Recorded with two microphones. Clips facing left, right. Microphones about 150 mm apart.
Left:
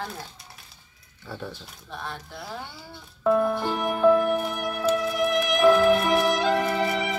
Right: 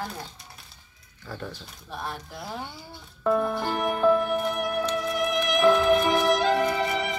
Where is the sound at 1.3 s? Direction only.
5° left (ahead or behind).